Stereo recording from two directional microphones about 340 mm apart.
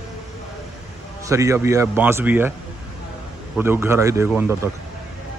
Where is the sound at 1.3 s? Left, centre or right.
Centre.